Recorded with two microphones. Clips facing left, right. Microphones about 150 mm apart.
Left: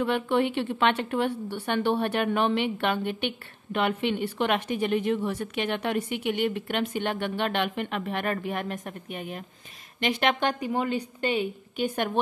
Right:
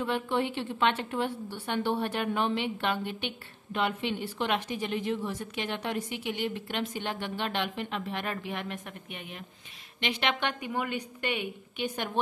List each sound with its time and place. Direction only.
0.0 s a woman's voice: 65° left (ahead or behind); by 11.8 s 30° left (ahead or behind)
11.8 s a woman's voice: 55° left (ahead or behind)